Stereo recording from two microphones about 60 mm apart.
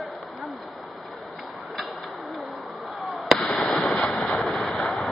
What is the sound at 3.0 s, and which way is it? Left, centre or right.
Fireworks, centre.